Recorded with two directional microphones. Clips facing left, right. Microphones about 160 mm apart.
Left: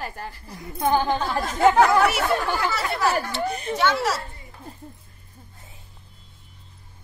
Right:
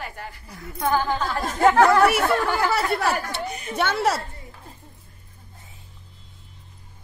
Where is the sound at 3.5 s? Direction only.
30° left (ahead or behind).